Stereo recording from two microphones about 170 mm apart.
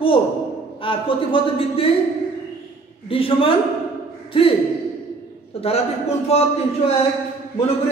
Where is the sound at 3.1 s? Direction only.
30° left (ahead or behind).